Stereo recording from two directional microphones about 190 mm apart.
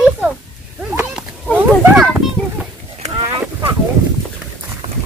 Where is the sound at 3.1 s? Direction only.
15° right (ahead or behind).